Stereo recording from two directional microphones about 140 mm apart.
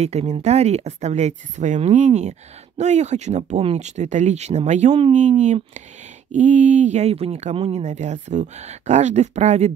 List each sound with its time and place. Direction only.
0.0 s speech: 50° right (ahead or behind)